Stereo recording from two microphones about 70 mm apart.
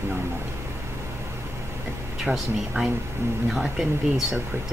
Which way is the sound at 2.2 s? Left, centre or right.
Centre.